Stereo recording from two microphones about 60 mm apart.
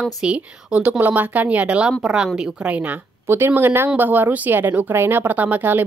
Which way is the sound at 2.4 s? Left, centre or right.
Right.